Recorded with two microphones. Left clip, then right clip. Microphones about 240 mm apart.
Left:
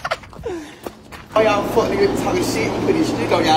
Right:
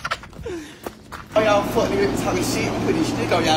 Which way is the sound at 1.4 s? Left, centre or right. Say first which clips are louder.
Left 2 dB; centre.